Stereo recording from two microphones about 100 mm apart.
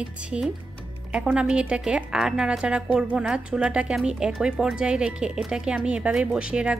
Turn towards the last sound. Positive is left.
turn(degrees=-10)  # may be behind; listen again after turning